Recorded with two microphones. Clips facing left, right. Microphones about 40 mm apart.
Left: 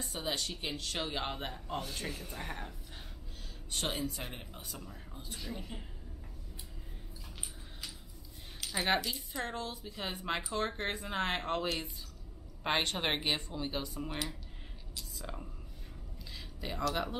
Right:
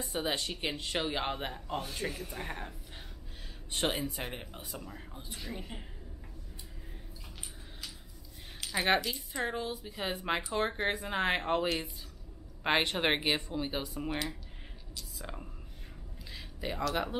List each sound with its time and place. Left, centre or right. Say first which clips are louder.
0.0 s speech: right 3 dB; centre
1.0 s speech: right 3 dB; centre
3.7 s speech: right 3 dB; right
8.5 s speech: right 3 dB; centre
15.1 s speech: right 1 dB; centre